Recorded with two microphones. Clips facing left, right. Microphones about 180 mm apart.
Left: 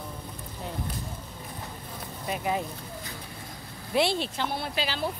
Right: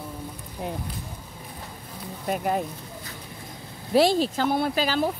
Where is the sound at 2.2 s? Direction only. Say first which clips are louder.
Right 4 dB; 45° right (ahead or behind).